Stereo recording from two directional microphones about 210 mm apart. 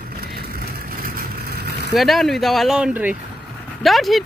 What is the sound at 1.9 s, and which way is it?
Speech, centre (ahead or behind).